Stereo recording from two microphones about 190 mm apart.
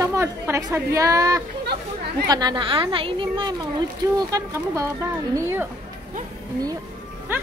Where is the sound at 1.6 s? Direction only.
60° right (ahead or behind).